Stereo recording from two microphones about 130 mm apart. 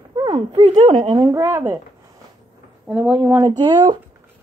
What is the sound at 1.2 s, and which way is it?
Speech, 25° right (ahead or behind).